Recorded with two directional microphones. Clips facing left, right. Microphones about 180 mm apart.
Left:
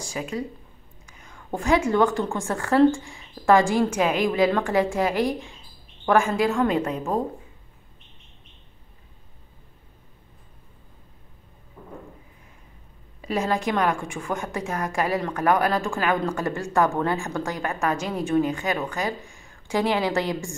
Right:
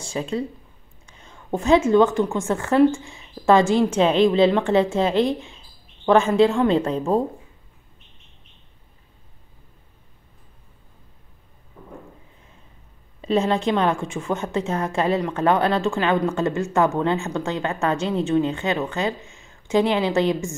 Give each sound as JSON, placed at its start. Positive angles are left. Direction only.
{"t": 0.0, "sound": "a woman's voice", "side_deg": -25}
{"t": 13.2, "sound": "speech", "side_deg": -25}